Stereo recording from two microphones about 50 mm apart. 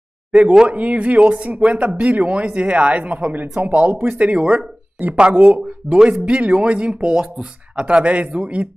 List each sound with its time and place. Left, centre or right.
0.3 s speech: right